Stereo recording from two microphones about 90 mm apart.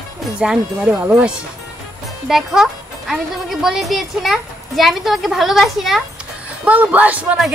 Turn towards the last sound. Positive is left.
turn(degrees=-15)  # may be behind; listen again after turning